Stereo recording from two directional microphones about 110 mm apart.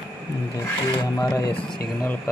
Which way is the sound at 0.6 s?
30° left (ahead or behind).